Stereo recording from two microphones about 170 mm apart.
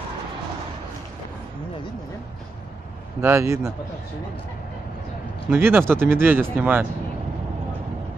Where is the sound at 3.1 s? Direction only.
15° right (ahead or behind).